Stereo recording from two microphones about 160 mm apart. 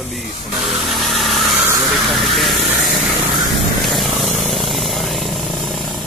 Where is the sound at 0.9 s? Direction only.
Centre (ahead or behind).